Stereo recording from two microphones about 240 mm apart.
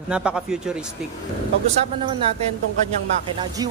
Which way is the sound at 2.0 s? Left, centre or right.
Centre.